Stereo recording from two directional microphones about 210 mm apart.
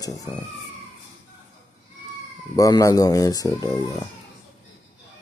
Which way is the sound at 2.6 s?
15° left (ahead or behind).